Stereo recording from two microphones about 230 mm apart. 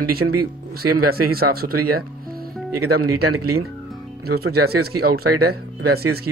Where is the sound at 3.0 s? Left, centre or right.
Right.